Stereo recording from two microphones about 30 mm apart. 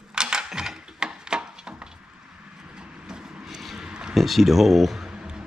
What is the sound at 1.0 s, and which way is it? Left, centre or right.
Wood, right.